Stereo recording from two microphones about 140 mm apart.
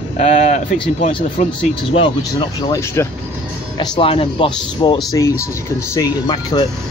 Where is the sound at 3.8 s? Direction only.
35° left (ahead or behind).